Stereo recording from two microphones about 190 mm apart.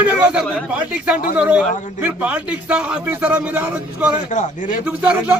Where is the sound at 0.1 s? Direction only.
10° right (ahead or behind).